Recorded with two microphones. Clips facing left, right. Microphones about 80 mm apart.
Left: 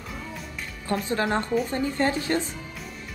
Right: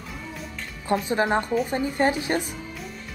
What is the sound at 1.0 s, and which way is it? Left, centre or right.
A woman's voice, centre.